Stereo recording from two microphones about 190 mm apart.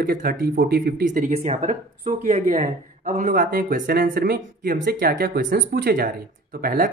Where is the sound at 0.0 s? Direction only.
45° right (ahead or behind).